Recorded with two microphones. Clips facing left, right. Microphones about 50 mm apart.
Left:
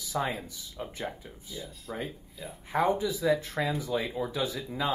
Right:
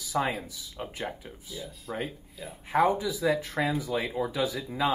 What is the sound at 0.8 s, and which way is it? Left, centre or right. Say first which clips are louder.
Speech: right 1 dB; right.